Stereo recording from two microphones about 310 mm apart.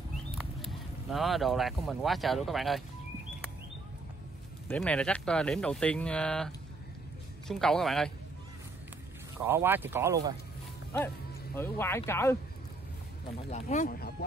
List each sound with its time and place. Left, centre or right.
0.4 s speech: centre
4.6 s speech: centre
9.4 s speech: centre
11.5 s speech: centre
13.5 s speech: left